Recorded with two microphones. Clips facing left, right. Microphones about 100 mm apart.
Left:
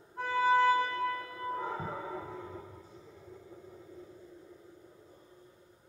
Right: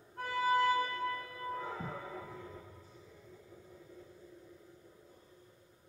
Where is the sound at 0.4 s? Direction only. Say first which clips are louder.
Left 4 dB; 35° left (ahead or behind).